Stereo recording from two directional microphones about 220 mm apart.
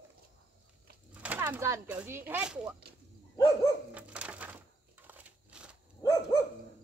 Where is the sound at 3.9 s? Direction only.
5° right (ahead or behind).